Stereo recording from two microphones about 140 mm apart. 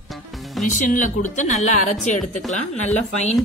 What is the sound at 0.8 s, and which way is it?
A woman's voice, 65° left (ahead or behind).